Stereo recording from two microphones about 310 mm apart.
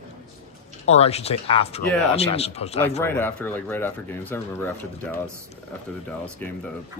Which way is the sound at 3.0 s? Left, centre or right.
Centre.